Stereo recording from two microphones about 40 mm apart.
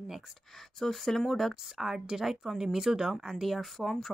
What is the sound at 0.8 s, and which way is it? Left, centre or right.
Speech, centre.